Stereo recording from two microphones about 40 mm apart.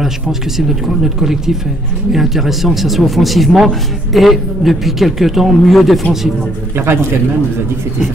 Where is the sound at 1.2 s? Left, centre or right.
Centre.